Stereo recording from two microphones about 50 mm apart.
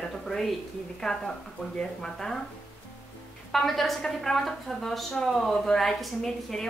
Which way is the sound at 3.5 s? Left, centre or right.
Centre.